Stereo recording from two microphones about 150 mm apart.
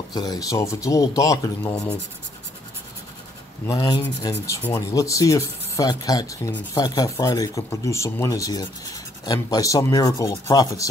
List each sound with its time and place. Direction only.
0.1 s speech: 25° left (ahead or behind)
1.7 s speech: 10° left (ahead or behind)
3.6 s speech: 25° left (ahead or behind)